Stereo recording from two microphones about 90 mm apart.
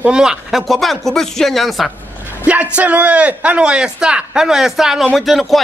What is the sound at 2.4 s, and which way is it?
A man's voice, 15° right (ahead or behind).